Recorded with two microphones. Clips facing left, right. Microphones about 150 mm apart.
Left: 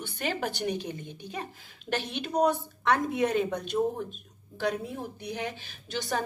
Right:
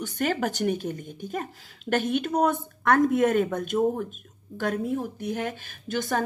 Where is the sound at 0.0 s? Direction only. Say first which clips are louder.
Right 5 dB; 45° right (ahead or behind).